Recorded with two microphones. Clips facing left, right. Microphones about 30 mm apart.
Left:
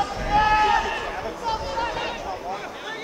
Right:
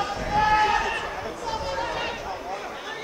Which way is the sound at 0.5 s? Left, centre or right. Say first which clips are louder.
Left 2 dB; centre.